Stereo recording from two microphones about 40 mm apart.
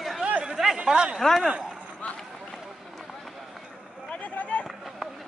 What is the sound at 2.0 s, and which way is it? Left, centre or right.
Run, left.